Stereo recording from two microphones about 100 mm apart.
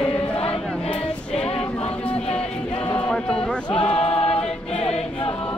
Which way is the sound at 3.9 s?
75° left (ahead or behind).